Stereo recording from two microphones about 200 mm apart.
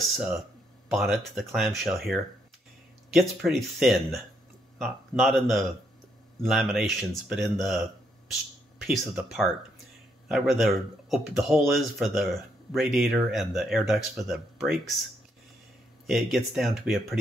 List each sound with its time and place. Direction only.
0.0 s speech: centre (ahead or behind)
16.1 s speech: centre (ahead or behind)